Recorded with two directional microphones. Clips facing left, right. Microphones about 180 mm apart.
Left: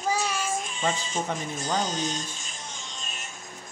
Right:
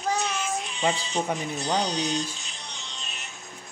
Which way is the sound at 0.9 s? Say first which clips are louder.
Right 2 dB; 45° left (ahead or behind).